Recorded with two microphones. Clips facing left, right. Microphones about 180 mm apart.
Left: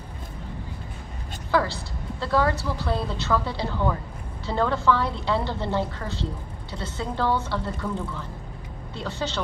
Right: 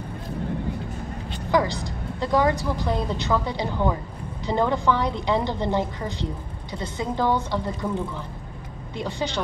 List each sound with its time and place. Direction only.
1.5 s a woman's voice: 15° right (ahead or behind)
8.9 s a woman's voice: 15° right (ahead or behind)